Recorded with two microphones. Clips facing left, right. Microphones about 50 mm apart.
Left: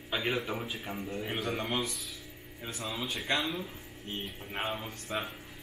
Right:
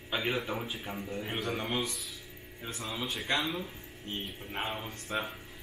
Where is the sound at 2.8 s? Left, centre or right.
Centre.